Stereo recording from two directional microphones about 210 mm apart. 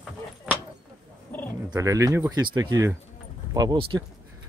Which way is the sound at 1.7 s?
15° right (ahead or behind).